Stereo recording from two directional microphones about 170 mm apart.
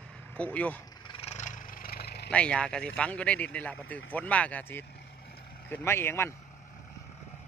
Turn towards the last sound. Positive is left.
turn(degrees=15)  # may be behind; listen again after turning